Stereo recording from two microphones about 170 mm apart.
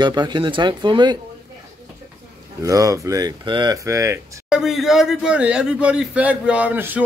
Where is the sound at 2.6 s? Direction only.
20° right (ahead or behind).